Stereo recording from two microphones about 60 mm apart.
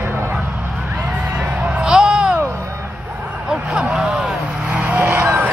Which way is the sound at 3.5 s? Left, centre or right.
Centre.